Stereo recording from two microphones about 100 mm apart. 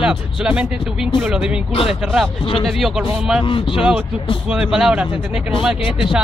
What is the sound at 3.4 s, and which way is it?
Speech, 55° left (ahead or behind).